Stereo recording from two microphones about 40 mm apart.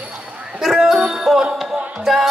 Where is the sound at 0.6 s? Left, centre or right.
Centre.